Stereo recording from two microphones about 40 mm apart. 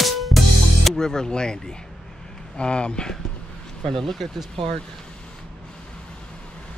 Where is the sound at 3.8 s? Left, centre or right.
Centre.